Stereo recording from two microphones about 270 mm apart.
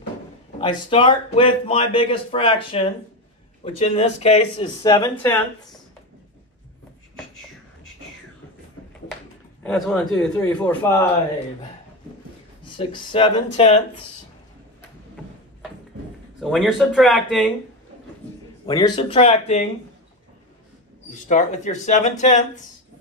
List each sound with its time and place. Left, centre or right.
0.6 s speech: centre
9.6 s speech: centre
12.6 s speech: centre
16.3 s speech: centre
18.7 s speech: centre
21.1 s speech: left